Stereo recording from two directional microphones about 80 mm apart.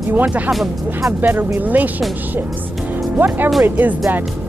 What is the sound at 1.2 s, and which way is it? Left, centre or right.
Speech, right.